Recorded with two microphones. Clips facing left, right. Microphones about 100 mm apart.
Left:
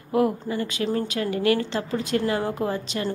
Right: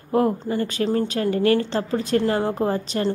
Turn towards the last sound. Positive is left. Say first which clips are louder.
# right 4 dB
turn(degrees=-35)  # may be behind; listen again after turning